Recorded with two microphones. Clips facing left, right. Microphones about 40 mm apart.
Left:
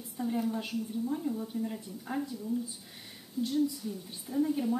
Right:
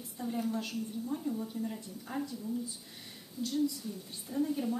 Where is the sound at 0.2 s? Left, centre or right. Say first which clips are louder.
Left 3 dB; centre.